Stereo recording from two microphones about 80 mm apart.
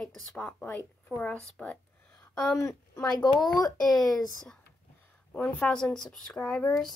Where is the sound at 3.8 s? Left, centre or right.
Centre.